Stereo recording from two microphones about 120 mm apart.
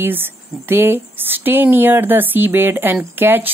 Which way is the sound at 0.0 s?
15° right (ahead or behind).